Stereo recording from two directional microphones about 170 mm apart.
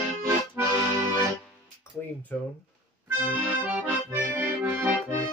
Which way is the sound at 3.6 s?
10° right (ahead or behind).